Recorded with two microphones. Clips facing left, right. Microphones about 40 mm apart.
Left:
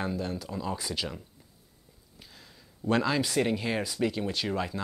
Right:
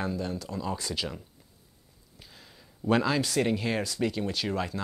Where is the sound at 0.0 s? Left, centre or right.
Centre.